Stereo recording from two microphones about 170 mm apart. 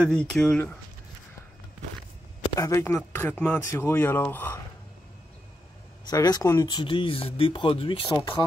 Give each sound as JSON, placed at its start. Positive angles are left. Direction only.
{"t": 0.0, "sound": "speech", "side_deg": 5}
{"t": 2.5, "sound": "speech", "side_deg": 20}
{"t": 6.0, "sound": "speech", "side_deg": 20}